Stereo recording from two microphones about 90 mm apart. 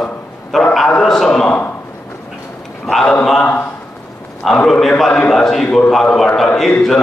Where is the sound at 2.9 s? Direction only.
5° left (ahead or behind).